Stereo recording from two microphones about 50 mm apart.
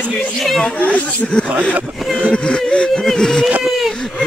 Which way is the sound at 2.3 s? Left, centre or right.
Centre.